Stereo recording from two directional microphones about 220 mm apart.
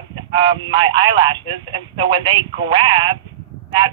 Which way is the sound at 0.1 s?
20° right (ahead or behind).